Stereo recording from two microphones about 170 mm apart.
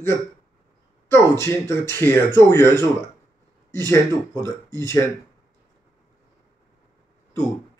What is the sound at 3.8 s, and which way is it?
Speech, 15° left (ahead or behind).